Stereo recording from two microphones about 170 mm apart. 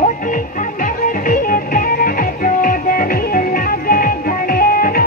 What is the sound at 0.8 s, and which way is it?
Music, 55° left (ahead or behind).